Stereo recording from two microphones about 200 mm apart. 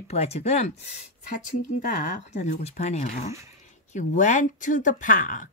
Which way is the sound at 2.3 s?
35° left (ahead or behind).